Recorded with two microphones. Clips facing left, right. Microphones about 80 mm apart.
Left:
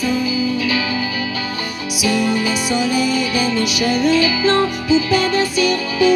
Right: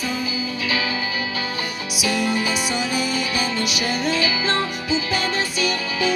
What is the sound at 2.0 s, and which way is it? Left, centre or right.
Music, centre.